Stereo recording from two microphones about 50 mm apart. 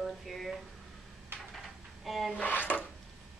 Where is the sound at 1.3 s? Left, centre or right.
Right.